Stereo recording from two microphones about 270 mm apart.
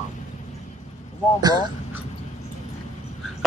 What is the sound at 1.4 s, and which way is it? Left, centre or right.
Speech, centre.